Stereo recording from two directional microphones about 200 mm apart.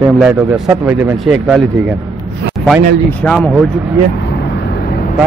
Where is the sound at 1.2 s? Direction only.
Centre (ahead or behind).